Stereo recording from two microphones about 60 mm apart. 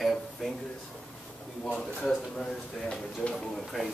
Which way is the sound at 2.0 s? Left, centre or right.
Centre.